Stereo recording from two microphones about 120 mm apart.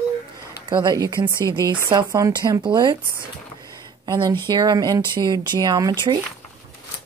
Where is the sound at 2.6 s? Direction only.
40° right (ahead or behind).